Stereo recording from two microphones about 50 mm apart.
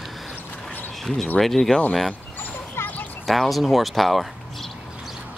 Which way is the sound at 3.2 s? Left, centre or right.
Centre.